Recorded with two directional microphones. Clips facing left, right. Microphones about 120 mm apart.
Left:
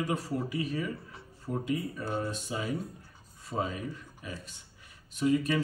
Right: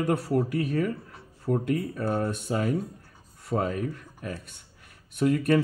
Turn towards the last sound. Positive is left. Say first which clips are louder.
# right 5 dB
turn(degrees=-60)  # may be behind; listen again after turning